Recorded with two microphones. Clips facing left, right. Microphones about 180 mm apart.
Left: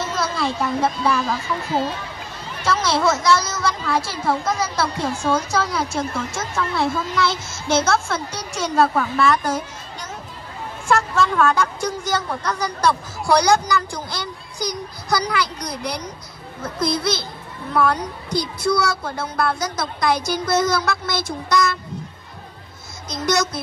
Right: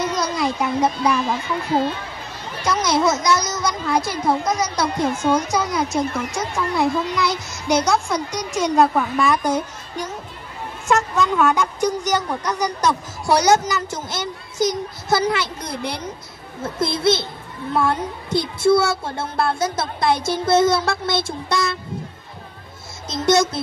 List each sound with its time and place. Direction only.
0.0 s speech: 15° right (ahead or behind)
2.6 s a woman's voice: 20° right (ahead or behind)
10.9 s a woman's voice: 15° right (ahead or behind)
23.0 s a woman's voice: 25° right (ahead or behind)